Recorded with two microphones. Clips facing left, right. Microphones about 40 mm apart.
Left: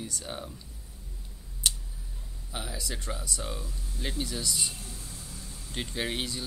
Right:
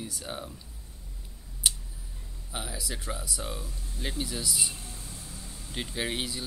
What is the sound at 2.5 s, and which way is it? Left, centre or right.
Speech, centre.